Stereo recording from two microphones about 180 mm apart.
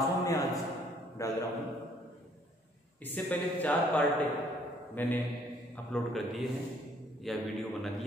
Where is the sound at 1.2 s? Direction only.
15° left (ahead or behind).